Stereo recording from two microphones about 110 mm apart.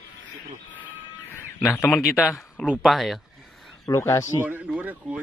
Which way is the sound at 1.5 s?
15° left (ahead or behind).